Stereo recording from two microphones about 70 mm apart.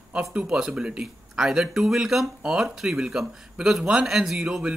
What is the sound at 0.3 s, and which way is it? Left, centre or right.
Speech, centre.